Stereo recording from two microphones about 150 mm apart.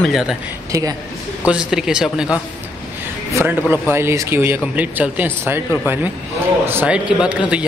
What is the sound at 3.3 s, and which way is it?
A man's voice, 15° right (ahead or behind).